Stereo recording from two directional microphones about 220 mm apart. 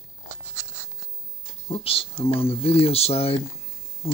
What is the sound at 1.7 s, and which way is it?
Speech, 25° left (ahead or behind).